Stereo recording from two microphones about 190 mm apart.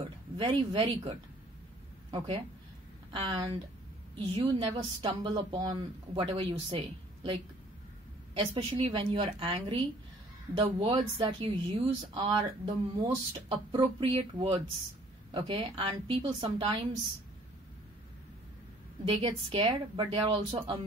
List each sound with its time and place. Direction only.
0.4 s speech: 25° right (ahead or behind)
8.4 s speech: 30° right (ahead or behind)
19.0 s speech: 30° right (ahead or behind)